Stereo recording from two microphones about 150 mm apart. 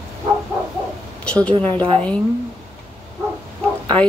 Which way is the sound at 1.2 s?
10° left (ahead or behind).